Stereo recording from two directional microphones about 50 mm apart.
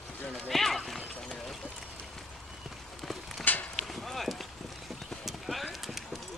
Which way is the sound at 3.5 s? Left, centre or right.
Left.